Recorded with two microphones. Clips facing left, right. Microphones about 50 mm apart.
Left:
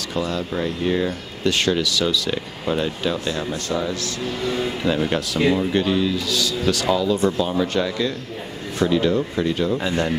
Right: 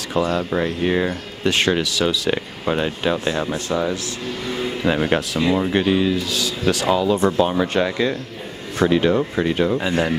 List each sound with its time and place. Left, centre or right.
0.3 s speech: right
4.8 s speech: right
8.7 s speech: right
9.8 s speech: centre